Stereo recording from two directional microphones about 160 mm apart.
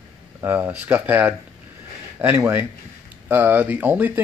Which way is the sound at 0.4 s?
10° right (ahead or behind).